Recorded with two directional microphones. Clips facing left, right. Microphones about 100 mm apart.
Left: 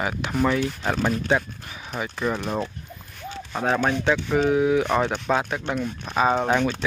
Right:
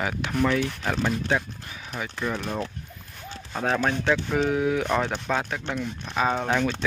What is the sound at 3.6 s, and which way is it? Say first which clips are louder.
Speech: left 2 dB; 15° left (ahead or behind).